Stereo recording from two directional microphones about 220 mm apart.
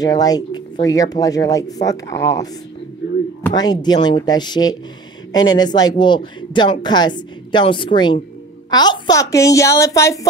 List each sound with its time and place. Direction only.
0.0 s speech: 15° left (ahead or behind)